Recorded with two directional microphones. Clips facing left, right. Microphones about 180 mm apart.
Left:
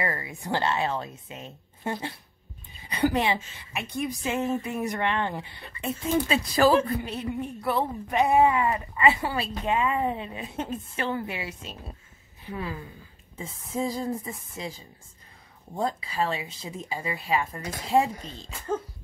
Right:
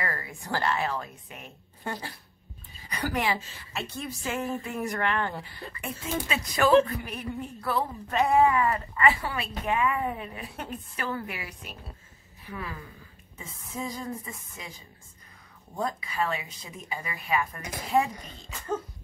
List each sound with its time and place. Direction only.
0.0 s a woman's voice: 20° left (ahead or behind)
15.7 s a woman's voice: 30° left (ahead or behind)